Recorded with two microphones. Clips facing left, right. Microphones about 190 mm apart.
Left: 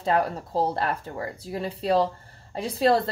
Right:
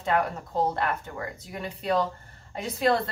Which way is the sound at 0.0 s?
30° left (ahead or behind).